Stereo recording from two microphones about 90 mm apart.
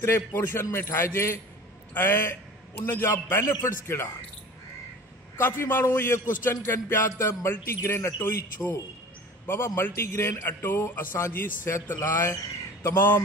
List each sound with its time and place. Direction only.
0.0 s a man's voice: 25° left (ahead or behind)
5.4 s a man's voice: 25° left (ahead or behind)
9.8 s a man's voice: 25° left (ahead or behind)